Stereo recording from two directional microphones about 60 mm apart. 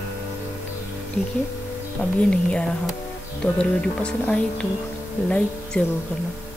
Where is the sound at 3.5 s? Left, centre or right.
Centre.